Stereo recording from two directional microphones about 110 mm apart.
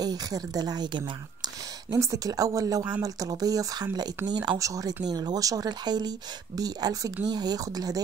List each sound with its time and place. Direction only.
0.0 s speech: 35° right (ahead or behind)